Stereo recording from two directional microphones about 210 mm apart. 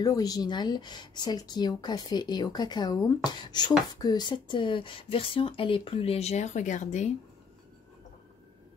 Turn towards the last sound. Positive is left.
turn(degrees=35)  # may be behind; listen again after turning